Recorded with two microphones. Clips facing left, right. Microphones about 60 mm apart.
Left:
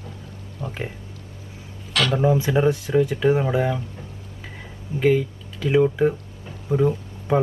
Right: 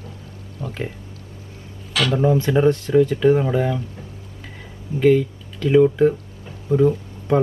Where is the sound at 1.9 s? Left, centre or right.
Centre.